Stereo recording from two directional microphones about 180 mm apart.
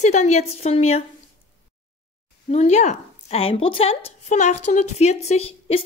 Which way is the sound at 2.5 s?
35° left (ahead or behind).